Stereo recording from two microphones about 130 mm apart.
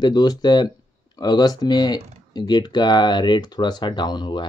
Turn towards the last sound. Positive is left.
turn(degrees=35)  # may be behind; listen again after turning